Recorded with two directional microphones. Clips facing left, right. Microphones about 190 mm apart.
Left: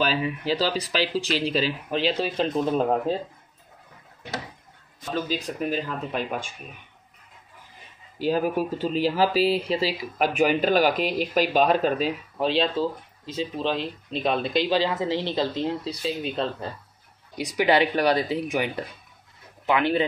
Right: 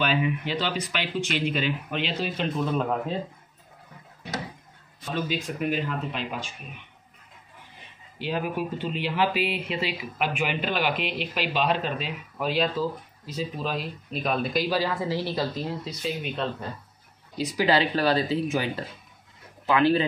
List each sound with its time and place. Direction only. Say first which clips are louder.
0.0 s speech: even; 35° left (ahead or behind)
5.3 s speech: right 1 dB; 35° left (ahead or behind)
8.2 s speech: left 5 dB; 40° left (ahead or behind)
12.4 s speech: left 2 dB; 25° left (ahead or behind)
17.4 s speech: left 2 dB; 20° left (ahead or behind)